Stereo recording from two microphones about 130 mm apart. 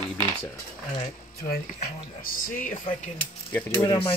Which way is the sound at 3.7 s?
30° left (ahead or behind).